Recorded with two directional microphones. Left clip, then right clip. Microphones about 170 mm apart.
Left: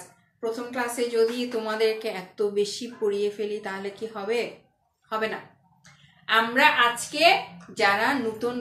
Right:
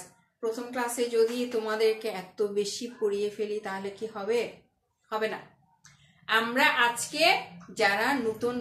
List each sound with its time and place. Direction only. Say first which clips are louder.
0.4 s a woman's voice: left 2 dB; 5° right (ahead or behind)